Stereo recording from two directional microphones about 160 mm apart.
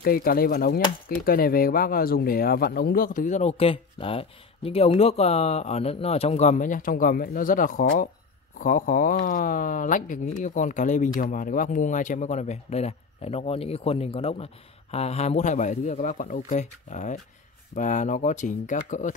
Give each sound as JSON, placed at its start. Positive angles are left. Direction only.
{"t": 0.0, "sound": "speech", "side_deg": 70}